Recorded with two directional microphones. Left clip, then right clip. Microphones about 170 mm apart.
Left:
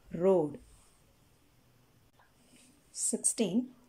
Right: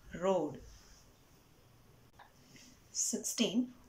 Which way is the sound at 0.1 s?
30° left (ahead or behind).